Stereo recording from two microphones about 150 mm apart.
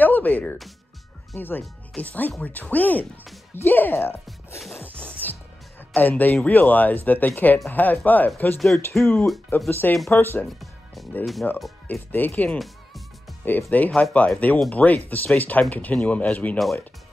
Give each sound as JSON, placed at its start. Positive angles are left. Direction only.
{"t": 0.0, "sound": "music", "side_deg": 10}
{"t": 1.3, "sound": "speech", "side_deg": 15}
{"t": 4.9, "sound": "music", "side_deg": 10}
{"t": 5.9, "sound": "speech", "side_deg": 10}
{"t": 8.5, "sound": "speech", "side_deg": 0}
{"t": 8.8, "sound": "speech", "side_deg": 15}
{"t": 10.3, "sound": "music", "side_deg": 0}
{"t": 11.4, "sound": "speech", "side_deg": 10}
{"t": 12.3, "sound": "speech", "side_deg": 0}
{"t": 13.5, "sound": "speech", "side_deg": 10}